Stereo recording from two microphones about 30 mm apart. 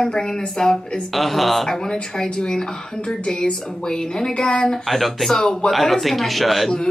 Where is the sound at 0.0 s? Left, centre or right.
Left.